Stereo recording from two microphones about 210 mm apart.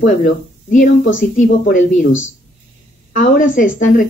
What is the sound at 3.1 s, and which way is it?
Speech, 40° left (ahead or behind).